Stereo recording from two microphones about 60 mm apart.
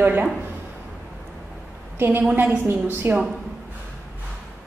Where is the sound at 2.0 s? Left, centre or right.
Right.